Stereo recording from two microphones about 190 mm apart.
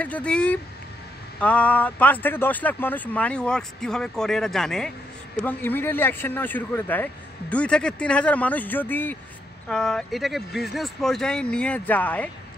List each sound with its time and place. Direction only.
0.0 s speech: 5° left (ahead or behind)